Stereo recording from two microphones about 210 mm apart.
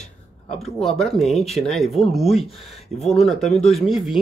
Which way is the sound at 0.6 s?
Centre (ahead or behind).